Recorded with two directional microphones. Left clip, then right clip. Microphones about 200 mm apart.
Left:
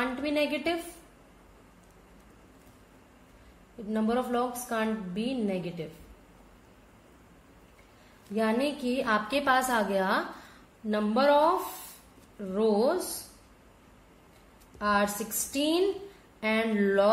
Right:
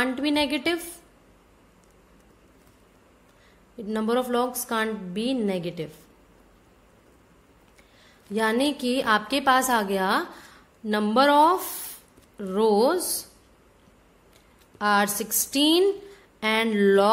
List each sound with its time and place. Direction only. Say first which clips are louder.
0.0 s a woman's voice: right 4 dB; 45° right (ahead or behind)
3.9 s a woman's voice: right 4 dB; 50° right (ahead or behind)
8.4 s a woman's voice: right 5 dB; 45° right (ahead or behind)
14.8 s a woman's voice: right 5 dB; 45° right (ahead or behind)